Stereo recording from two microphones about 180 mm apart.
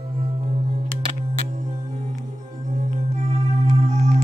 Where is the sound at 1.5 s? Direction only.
45° right (ahead or behind).